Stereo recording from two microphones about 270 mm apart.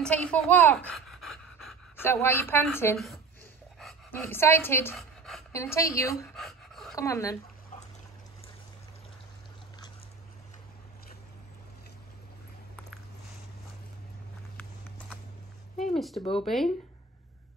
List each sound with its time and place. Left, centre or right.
0.0 s speech: centre
6.3 s pant: centre
7.0 s speech: centre
15.8 s speech: centre
16.2 s speech: centre
16.4 s speech: centre